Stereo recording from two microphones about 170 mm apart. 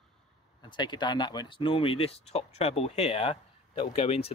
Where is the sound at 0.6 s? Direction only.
25° left (ahead or behind).